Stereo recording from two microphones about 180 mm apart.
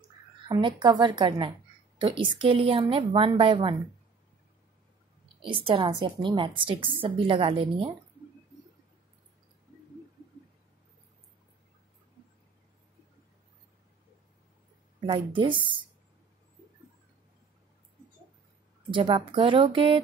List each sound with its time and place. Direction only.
0.5 s a woman's voice: 25° right (ahead or behind)
5.4 s a woman's voice: 30° right (ahead or behind)
15.0 s a woman's voice: 25° right (ahead or behind)
18.9 s a woman's voice: 30° right (ahead or behind)